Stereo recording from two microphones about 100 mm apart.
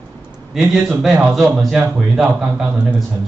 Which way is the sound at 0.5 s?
Centre (ahead or behind).